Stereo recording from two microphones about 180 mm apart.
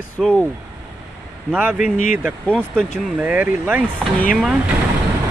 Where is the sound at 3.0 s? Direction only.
10° right (ahead or behind).